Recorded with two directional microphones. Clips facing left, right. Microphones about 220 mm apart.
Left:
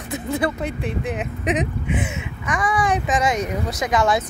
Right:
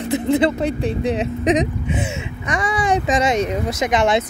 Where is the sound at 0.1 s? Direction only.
25° right (ahead or behind).